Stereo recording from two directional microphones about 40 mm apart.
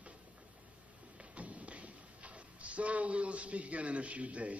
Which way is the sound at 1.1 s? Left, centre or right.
Right.